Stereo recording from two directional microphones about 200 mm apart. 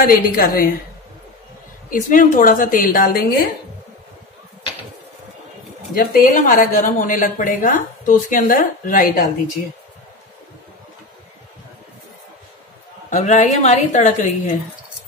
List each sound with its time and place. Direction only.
0.0 s a woman's voice: 45° left (ahead or behind)
1.9 s a woman's voice: 40° left (ahead or behind)
5.9 s a woman's voice: 45° left (ahead or behind)
13.1 s a woman's voice: 35° left (ahead or behind)